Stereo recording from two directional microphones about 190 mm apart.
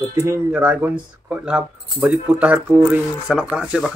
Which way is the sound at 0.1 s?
15° right (ahead or behind).